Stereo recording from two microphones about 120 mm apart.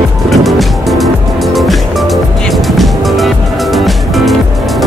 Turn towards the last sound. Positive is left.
turn(degrees=0)  # may be behind; listen again after turning